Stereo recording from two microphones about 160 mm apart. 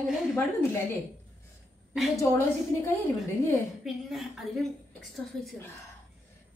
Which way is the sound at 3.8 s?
Centre (ahead or behind).